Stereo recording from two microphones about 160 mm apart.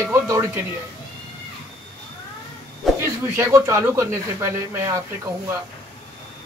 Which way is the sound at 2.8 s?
Centre (ahead or behind).